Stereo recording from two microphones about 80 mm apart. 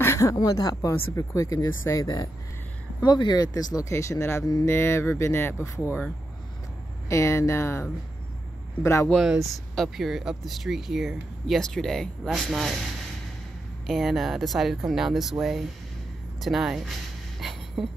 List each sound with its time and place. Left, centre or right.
0.0 s speech: left
3.0 s speech: left
3.9 s speech: left
7.1 s speech: left
9.4 s speech: centre
13.8 s speech: centre
16.3 s speech: centre
17.4 s a sound: centre